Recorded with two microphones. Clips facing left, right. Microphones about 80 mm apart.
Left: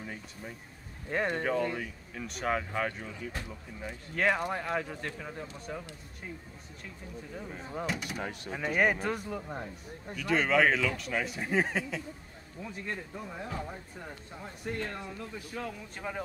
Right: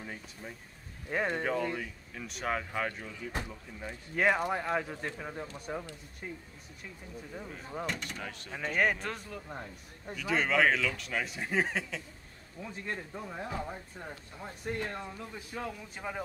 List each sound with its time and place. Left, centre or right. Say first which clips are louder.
0.0 s speech: left 1 dB; centre
4.1 s speech: right 1 dB; centre
7.4 s speech: left 2 dB; centre
10.0 s speech: left 2 dB; centre
12.6 s speech: left 1 dB; centre
13.1 s speech: right 1 dB; centre